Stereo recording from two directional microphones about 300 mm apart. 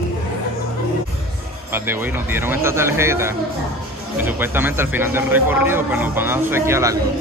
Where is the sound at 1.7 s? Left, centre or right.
Centre.